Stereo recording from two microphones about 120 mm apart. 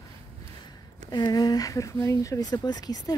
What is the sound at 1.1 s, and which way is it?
Speech, 35° left (ahead or behind).